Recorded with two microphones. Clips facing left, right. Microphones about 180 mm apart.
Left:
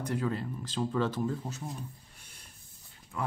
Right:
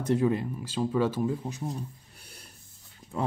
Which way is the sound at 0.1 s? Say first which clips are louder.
Right 9 dB; 15° right (ahead or behind).